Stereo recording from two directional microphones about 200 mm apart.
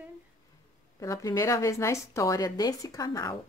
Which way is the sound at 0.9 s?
15° left (ahead or behind).